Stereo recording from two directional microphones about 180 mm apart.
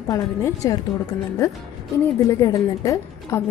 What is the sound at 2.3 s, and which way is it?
Speech, 20° left (ahead or behind).